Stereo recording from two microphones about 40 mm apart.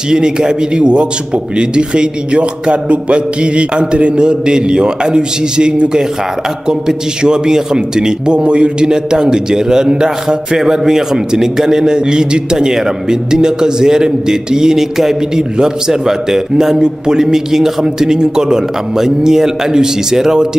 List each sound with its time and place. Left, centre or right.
0.1 s a man's voice: centre